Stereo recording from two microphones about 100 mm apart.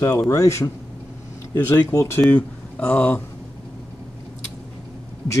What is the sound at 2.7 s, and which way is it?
Speech, 10° left (ahead or behind).